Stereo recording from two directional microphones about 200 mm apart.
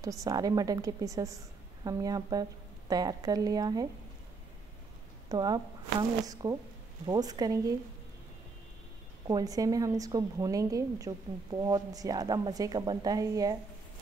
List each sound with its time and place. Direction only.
0.0 s a woman's voice: 15° right (ahead or behind)
5.3 s speech: 20° right (ahead or behind)
9.3 s a woman's voice: 20° right (ahead or behind)